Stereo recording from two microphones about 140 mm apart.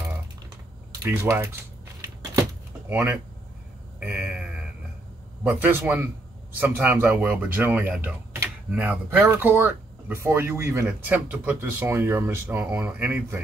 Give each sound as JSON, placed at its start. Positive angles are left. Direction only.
{"t": 1.0, "sound": "speech", "side_deg": -20}
{"t": 2.9, "sound": "speech", "side_deg": -15}
{"t": 4.0, "sound": "a sound", "side_deg": -10}
{"t": 5.4, "sound": "speech", "side_deg": -10}